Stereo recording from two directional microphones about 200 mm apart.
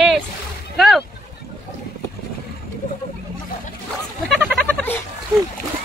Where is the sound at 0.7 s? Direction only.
Centre (ahead or behind).